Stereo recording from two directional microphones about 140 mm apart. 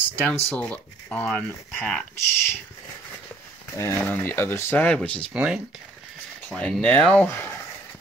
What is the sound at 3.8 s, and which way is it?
Speech, 15° left (ahead or behind).